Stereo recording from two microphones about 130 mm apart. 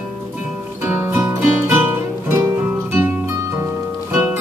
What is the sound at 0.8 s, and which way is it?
Music, 15° right (ahead or behind).